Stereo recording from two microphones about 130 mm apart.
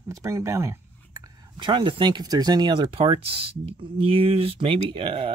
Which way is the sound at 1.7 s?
40° right (ahead or behind).